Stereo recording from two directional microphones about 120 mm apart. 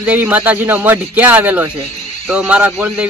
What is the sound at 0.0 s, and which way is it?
Speech, 15° right (ahead or behind).